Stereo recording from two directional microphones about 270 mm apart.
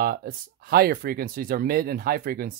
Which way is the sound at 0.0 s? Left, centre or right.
Right.